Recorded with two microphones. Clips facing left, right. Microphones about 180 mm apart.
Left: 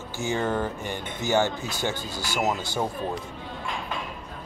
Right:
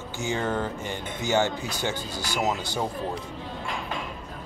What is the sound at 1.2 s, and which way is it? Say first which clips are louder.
Speech: left 1 dB; 20° right (ahead or behind).